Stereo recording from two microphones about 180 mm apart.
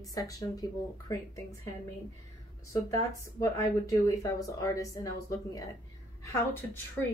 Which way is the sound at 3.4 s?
20° left (ahead or behind).